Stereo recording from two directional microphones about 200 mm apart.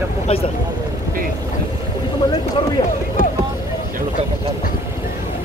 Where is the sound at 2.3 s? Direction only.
25° left (ahead or behind).